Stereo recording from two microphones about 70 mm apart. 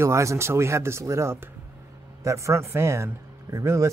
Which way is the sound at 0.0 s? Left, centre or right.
Right.